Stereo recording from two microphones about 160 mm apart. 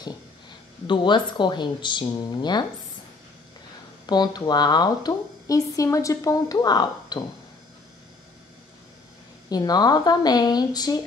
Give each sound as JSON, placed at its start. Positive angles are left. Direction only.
{"t": 0.8, "sound": "speech", "side_deg": 30}
{"t": 4.0, "sound": "speech", "side_deg": 25}
{"t": 9.5, "sound": "speech", "side_deg": 25}